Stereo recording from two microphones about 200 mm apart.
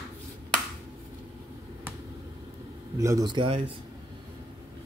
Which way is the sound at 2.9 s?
15° right (ahead or behind).